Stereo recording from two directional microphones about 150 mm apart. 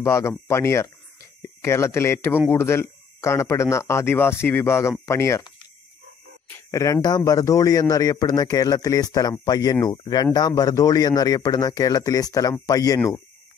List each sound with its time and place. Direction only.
0.0 s speech: 20° left (ahead or behind)
6.4 s speech: 20° left (ahead or behind)